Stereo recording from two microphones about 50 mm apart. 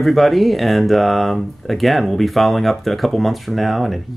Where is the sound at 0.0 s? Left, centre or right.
Centre.